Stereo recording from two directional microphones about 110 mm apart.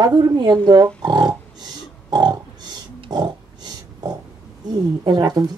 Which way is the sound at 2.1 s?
40° right (ahead or behind).